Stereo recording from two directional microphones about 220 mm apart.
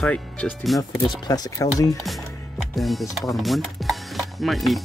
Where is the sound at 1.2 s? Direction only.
15° left (ahead or behind).